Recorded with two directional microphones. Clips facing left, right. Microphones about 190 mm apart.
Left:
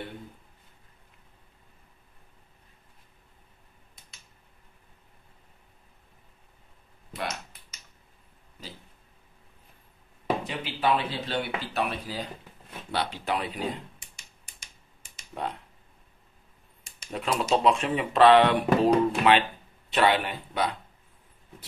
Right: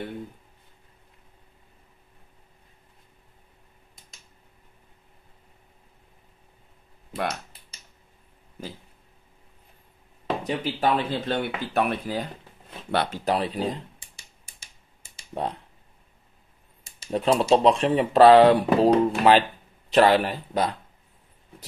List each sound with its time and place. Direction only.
10.4 s speech: 45° right (ahead or behind)
13.2 s speech: 35° right (ahead or behind)
15.1 s computer keyboard: 30° right (ahead or behind)
17.0 s speech: 30° right (ahead or behind)